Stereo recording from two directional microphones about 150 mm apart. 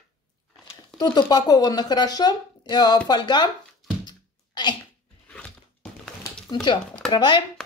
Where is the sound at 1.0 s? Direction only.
25° left (ahead or behind).